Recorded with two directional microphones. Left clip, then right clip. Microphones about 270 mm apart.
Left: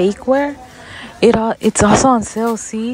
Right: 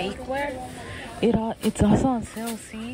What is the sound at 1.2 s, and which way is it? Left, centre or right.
Speech, left.